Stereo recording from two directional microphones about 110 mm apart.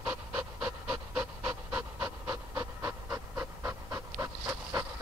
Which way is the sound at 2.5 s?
30° right (ahead or behind).